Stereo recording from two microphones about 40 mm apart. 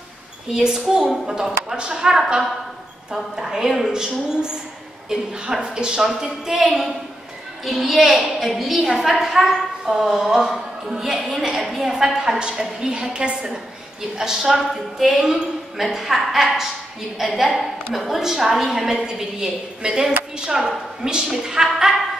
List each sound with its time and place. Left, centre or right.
0.5 s a woman's voice: centre
5.5 s a woman's voice: centre
17.2 s a woman's voice: centre